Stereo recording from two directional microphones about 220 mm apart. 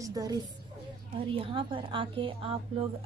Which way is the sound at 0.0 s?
15° right (ahead or behind).